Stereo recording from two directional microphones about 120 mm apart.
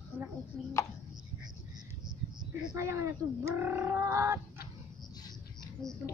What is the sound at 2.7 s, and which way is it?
Speech, 25° right (ahead or behind).